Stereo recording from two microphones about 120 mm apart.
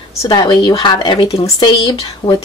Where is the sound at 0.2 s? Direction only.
35° left (ahead or behind).